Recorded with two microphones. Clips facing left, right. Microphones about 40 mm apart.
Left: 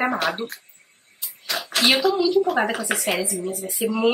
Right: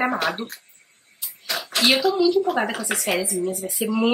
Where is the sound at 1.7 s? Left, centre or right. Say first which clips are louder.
Even; centre.